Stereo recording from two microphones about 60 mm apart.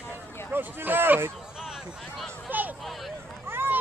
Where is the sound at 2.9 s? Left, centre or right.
Centre.